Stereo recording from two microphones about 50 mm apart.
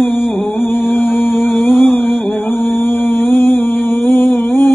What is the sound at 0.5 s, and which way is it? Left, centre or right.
Music, left.